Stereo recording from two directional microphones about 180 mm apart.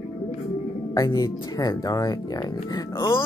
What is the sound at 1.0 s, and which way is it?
Speech, 20° left (ahead or behind).